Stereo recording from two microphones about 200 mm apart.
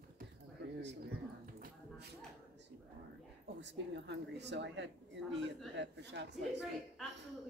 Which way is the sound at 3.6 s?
60° right (ahead or behind).